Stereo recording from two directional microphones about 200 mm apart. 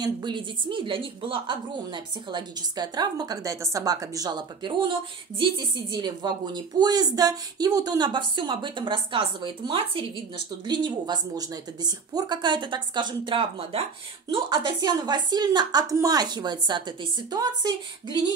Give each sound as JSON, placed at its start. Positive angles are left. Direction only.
{"t": 0.0, "sound": "a woman's voice", "side_deg": -20}